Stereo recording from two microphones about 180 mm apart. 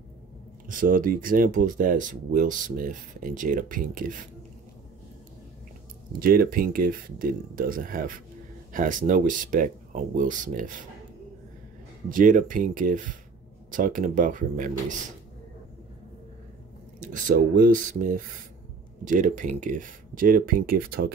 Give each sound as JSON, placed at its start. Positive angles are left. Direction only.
{"t": 0.7, "sound": "speech", "side_deg": -50}
{"t": 6.1, "sound": "speech", "side_deg": -55}
{"t": 12.1, "sound": "speech", "side_deg": -50}
{"t": 17.0, "sound": "speech", "side_deg": -45}